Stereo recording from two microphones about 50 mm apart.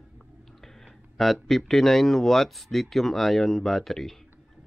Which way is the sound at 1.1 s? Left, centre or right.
Centre.